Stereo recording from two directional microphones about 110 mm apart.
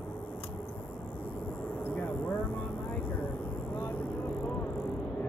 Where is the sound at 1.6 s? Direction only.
15° left (ahead or behind).